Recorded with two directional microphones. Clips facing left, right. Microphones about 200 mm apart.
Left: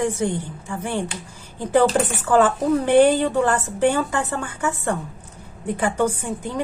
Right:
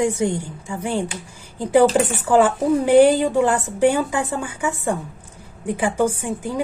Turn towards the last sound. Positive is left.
turn(degrees=-10)  # may be behind; listen again after turning